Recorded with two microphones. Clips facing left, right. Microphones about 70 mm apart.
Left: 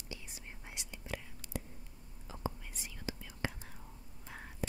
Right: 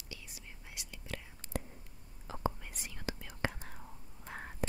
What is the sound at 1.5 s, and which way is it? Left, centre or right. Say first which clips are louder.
Whispering: right 3 dB; right.